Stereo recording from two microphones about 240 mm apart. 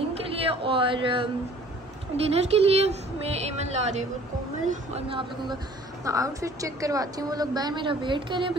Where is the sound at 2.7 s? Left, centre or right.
Right.